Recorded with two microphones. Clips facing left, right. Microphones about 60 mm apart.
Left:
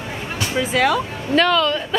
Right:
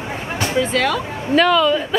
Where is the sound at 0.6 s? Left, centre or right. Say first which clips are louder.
Left 1 dB; centre.